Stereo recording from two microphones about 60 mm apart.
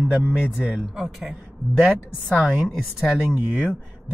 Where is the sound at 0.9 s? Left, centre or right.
Centre.